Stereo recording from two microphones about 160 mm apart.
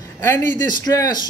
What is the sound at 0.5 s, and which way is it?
Speech, 25° left (ahead or behind).